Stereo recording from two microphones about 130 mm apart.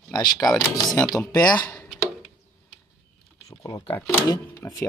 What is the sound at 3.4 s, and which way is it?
Computer keyboard, 25° left (ahead or behind).